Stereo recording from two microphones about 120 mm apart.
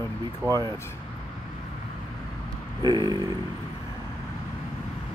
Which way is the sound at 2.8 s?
35° right (ahead or behind).